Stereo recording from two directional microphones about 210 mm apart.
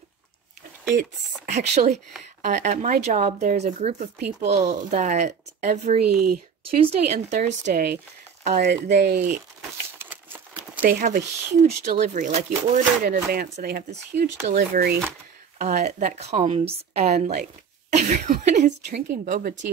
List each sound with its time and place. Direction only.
0.9 s speech: 35° right (ahead or behind)
6.0 s speech: 45° right (ahead or behind)
6.8 s speech: 35° right (ahead or behind)
9.9 s crumpling: 10° right (ahead or behind)
10.8 s speech: 40° right (ahead or behind)
13.0 s speech: 45° right (ahead or behind)